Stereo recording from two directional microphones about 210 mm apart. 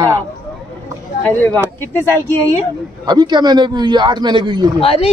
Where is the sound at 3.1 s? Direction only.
20° right (ahead or behind).